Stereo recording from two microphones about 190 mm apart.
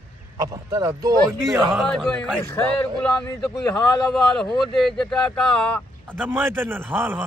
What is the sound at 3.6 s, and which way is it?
Speech, 15° left (ahead or behind).